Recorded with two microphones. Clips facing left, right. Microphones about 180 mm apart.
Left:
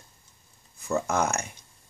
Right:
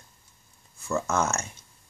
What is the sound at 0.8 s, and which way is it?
Speech, 15° left (ahead or behind).